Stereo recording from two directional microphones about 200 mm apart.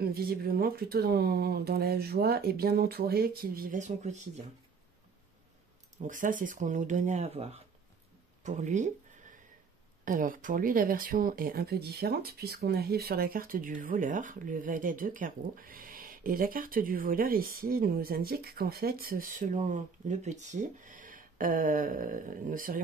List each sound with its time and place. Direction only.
0.0 s speech: 50° right (ahead or behind)
5.9 s speech: 40° right (ahead or behind)